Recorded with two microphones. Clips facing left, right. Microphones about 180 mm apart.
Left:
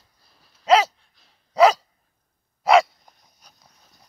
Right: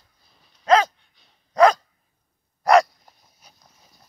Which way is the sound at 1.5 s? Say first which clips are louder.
Even; 5° left (ahead or behind).